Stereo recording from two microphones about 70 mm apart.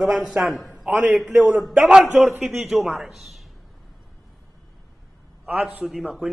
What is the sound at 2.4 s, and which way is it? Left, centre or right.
A man's voice, centre.